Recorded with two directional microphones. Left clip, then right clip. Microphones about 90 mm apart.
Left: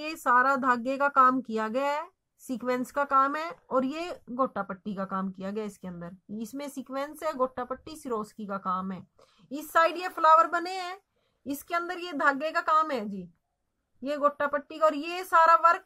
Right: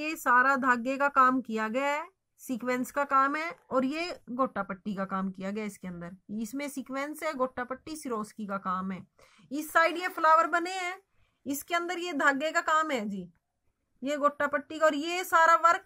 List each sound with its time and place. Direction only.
0.0 s speech: 15° left (ahead or behind)
3.7 s a woman's voice: 35° left (ahead or behind)
11.4 s a woman's voice: centre (ahead or behind)